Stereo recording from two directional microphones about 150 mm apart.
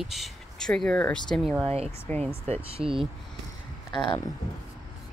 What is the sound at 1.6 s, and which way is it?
Speech, 40° right (ahead or behind).